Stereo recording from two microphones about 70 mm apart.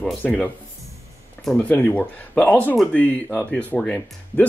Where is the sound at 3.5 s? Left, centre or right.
Centre.